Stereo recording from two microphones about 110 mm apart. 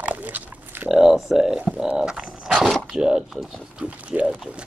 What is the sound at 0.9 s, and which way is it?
Speech, centre (ahead or behind).